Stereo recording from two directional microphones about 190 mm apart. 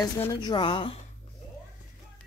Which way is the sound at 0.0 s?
20° left (ahead or behind).